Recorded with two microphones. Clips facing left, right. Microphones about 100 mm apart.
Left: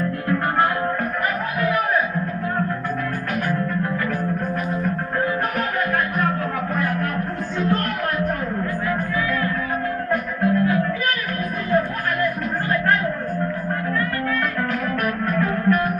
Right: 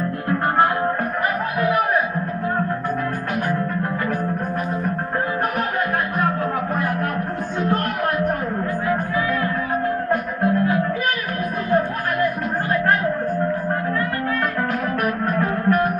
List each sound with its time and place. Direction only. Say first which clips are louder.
0.3 s music: right 2 dB; 25° right (ahead or behind)
8.8 s music: right 3 dB; 35° right (ahead or behind)
11.7 s a sound: right 1 dB; 30° right (ahead or behind)
15.3 s music: even; 35° right (ahead or behind)